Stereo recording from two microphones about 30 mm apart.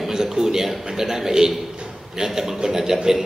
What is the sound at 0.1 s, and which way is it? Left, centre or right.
A man's voice, centre.